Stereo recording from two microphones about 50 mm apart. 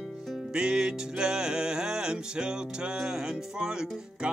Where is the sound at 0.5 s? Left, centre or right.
Centre.